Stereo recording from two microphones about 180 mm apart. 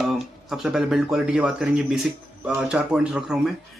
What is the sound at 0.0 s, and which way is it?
Speech, centre (ahead or behind).